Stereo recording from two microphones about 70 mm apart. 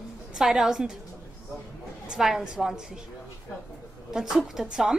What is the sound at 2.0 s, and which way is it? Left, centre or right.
Speech, centre.